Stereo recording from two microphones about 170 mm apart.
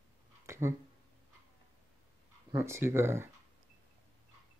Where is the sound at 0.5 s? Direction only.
15° right (ahead or behind).